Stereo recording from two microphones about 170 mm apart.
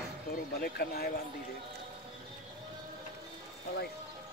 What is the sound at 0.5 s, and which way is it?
Speech, 65° left (ahead or behind).